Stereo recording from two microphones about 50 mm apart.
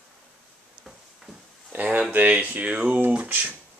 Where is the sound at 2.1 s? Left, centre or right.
Right.